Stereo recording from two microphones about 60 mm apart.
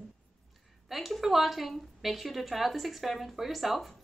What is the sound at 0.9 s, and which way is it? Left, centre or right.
A woman's voice, centre.